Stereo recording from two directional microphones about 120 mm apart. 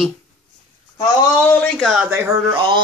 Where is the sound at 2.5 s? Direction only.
40° right (ahead or behind).